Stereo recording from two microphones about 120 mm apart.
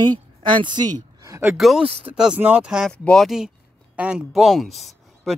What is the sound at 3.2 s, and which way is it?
Speech, 5° right (ahead or behind).